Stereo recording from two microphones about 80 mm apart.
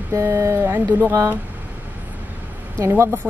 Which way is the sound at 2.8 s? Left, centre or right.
Right.